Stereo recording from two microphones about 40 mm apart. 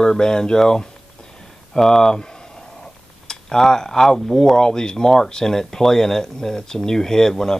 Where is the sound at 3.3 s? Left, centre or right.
Centre.